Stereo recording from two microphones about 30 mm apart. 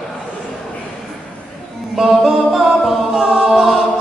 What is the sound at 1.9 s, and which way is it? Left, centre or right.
A capella, centre.